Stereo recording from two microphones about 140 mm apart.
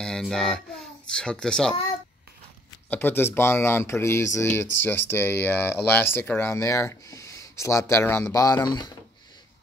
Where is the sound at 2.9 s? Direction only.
15° left (ahead or behind).